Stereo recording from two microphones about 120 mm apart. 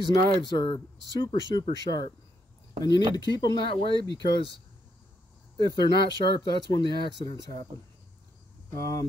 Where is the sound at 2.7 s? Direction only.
35° left (ahead or behind).